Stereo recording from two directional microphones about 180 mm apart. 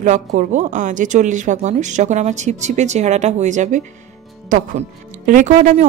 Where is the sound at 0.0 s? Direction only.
45° right (ahead or behind).